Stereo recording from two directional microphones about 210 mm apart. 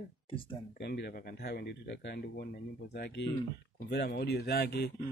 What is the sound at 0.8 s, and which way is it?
Speech, 50° left (ahead or behind).